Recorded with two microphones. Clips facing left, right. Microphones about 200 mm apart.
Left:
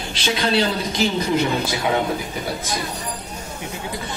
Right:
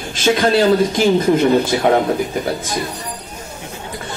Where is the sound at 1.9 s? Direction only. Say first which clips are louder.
Right 6 dB; 55° right (ahead or behind).